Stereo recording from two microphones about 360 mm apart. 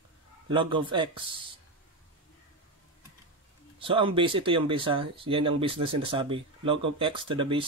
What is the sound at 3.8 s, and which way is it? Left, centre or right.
Speech, centre.